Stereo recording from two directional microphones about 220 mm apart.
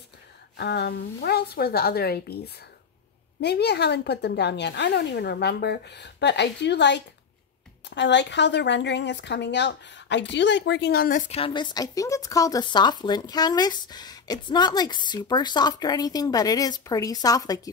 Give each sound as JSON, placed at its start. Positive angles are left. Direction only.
{"t": 0.6, "sound": "speech", "side_deg": 50}